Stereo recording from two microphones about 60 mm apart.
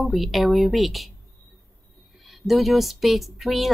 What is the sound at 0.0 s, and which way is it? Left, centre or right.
Speech, centre.